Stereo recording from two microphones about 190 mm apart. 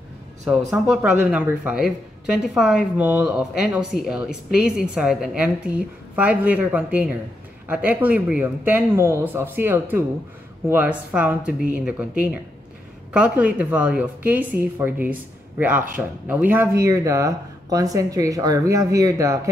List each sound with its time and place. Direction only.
0.8 s a woman's voice: 5° right (ahead or behind)
13.1 s speech: 5° right (ahead or behind)